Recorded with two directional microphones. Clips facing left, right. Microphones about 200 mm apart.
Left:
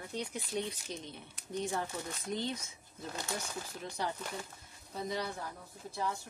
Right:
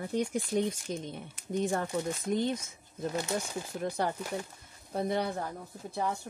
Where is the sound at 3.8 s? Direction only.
55° right (ahead or behind).